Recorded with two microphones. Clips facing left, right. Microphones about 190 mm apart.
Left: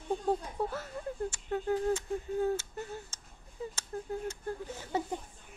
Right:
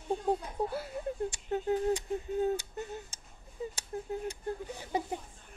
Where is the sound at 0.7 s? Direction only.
10° right (ahead or behind).